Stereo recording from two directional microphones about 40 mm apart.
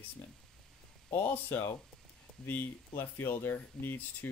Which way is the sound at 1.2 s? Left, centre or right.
Left.